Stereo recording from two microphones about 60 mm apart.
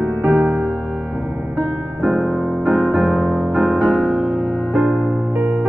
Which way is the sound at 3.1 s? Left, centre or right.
Centre.